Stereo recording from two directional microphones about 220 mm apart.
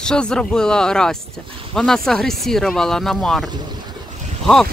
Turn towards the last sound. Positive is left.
turn(degrees=0)  # may be behind; listen again after turning